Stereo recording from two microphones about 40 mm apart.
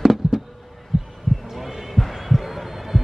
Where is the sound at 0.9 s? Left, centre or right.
Centre.